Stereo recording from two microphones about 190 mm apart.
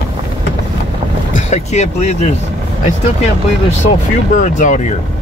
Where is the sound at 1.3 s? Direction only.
35° left (ahead or behind).